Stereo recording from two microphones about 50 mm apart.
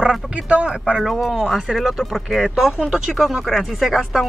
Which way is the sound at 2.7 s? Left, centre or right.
Centre.